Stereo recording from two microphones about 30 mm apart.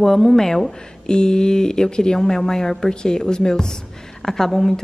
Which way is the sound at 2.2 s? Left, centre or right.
Centre.